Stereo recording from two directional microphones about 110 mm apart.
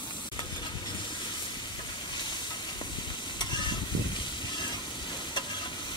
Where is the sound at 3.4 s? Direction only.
45° left (ahead or behind).